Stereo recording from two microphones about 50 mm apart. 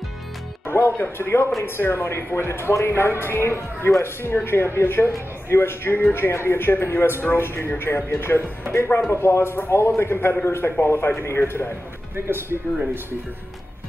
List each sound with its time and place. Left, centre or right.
0.7 s music: left
1.1 s speech: left
1.6 s speech: left
8.1 s speech: left
12.3 s speech: right